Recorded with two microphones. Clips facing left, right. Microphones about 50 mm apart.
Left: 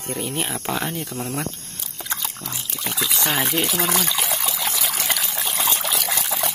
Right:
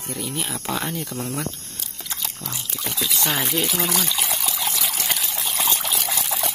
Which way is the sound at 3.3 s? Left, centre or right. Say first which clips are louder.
Left 1 dB; centre.